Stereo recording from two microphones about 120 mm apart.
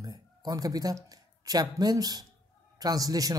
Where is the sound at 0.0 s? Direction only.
30° right (ahead or behind).